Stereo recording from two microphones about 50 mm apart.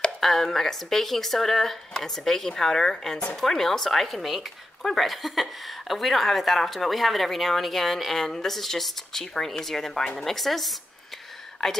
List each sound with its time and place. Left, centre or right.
0.2 s speech: centre